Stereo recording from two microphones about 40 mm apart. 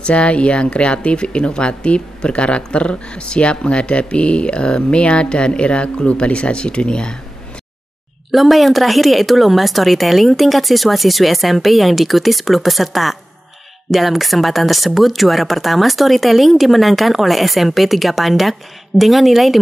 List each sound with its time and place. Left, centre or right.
0.0 s speech: left
8.3 s speech: centre